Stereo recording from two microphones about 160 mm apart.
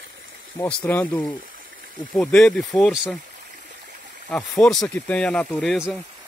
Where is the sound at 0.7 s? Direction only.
10° left (ahead or behind).